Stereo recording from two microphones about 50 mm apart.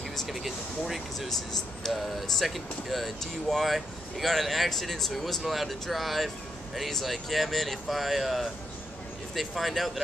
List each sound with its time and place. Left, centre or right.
0.3 s speech: centre